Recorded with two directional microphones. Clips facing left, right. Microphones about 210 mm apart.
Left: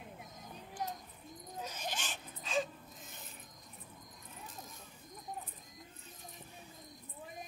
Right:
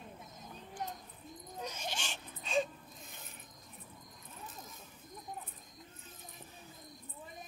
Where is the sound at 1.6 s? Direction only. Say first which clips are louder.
Right 1 dB; 5° left (ahead or behind).